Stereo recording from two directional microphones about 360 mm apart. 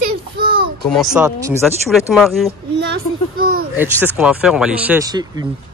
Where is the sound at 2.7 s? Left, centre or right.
Right.